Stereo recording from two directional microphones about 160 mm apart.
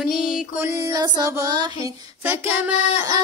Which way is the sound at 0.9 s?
25° right (ahead or behind).